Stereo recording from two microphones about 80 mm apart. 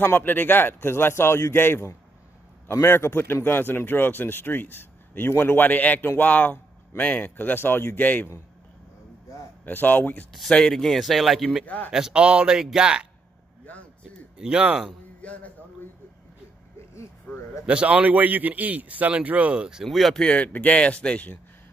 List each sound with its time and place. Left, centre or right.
0.0 s a man's voice: left
9.7 s a man's voice: left
10.5 s speech: centre
11.6 s a man's voice: left
11.9 s a man's voice: centre
13.7 s a sound: centre
14.4 s a man's voice: centre
15.2 s speech: centre
16.9 s vehicle: left
17.6 s a man's voice: centre
19.8 s speech: centre
20.2 s speech: centre